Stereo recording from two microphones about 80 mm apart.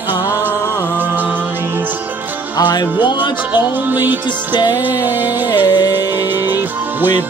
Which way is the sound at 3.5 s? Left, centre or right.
Right.